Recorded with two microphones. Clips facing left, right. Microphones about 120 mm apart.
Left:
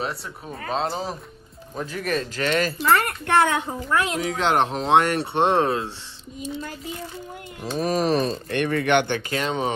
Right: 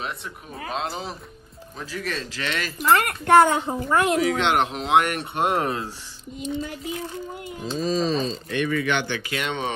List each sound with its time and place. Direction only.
0.7 s speech: 35° left (ahead or behind)
2.8 s a woman's voice: 5° right (ahead or behind)
4.4 s speech: 35° left (ahead or behind)
7.7 s speech: 65° left (ahead or behind)
9.3 s speech: 35° left (ahead or behind)